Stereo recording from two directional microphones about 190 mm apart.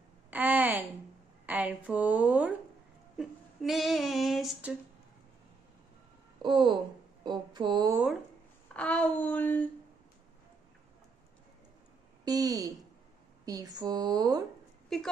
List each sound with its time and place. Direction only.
0.3 s a sound: 10° right (ahead or behind)
1.4 s a woman's voice: 10° right (ahead or behind)
3.2 s child singing: centre (ahead or behind)
6.4 s speech: 25° right (ahead or behind)
7.9 s speech: 5° right (ahead or behind)
8.7 s speech: 5° left (ahead or behind)
12.3 s speech: 20° right (ahead or behind)
14.9 s speech: centre (ahead or behind)